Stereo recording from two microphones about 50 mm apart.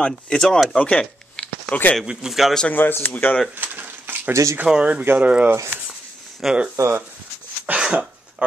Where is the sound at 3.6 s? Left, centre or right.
Right.